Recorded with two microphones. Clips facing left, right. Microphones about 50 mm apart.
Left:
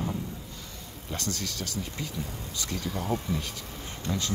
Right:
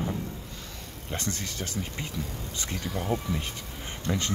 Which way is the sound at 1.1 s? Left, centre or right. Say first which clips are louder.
Even; right.